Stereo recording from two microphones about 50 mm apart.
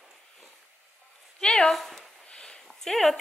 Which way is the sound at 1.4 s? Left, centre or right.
Centre.